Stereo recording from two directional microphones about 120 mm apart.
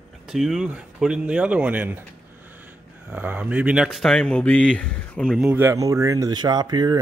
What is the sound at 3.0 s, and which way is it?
Speech, 15° right (ahead or behind).